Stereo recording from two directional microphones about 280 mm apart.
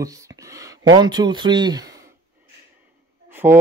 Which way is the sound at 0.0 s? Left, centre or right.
Centre.